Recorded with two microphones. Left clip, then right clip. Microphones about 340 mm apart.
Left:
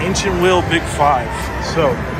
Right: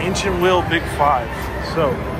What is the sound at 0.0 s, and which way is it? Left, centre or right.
Speech, centre.